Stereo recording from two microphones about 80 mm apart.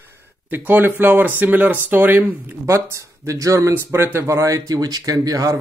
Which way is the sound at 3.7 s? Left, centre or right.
Right.